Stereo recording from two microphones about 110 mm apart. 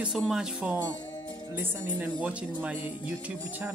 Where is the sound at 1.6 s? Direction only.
20° right (ahead or behind).